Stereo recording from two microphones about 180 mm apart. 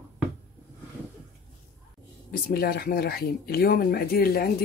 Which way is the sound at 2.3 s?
60° left (ahead or behind).